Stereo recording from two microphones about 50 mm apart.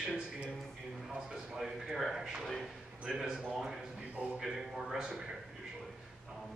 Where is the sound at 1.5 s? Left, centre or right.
Centre.